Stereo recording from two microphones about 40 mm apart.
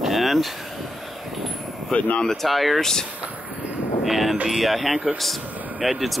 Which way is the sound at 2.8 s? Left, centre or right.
Centre.